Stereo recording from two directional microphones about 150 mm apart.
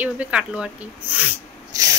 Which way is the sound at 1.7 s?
20° right (ahead or behind).